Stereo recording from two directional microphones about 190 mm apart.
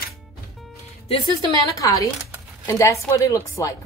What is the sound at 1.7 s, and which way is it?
A woman's voice, 15° left (ahead or behind).